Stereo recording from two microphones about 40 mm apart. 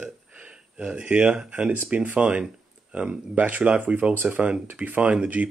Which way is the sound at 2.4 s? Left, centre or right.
Right.